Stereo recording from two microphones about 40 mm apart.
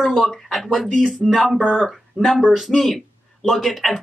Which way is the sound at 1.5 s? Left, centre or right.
Left.